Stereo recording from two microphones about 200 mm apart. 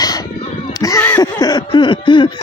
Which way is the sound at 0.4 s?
15° left (ahead or behind).